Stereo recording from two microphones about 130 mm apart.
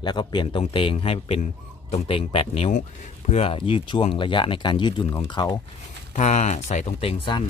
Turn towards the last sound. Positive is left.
turn(degrees=40)  # may be behind; listen again after turning